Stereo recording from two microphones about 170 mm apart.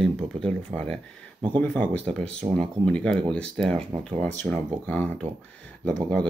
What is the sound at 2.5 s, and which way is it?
Speech, 5° left (ahead or behind).